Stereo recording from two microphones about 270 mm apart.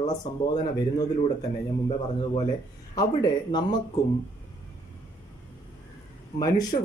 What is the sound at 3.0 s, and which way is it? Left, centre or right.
Speech, centre.